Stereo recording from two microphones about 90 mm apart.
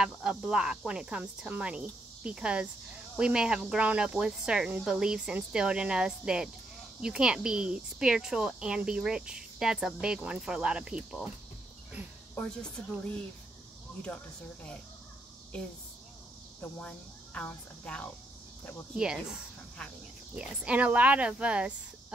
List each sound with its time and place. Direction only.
0.0 s speech: 10° right (ahead or behind)
14.0 s speech: 15° left (ahead or behind)
16.8 s speech: 15° left (ahead or behind)
18.9 s speech: 5° right (ahead or behind)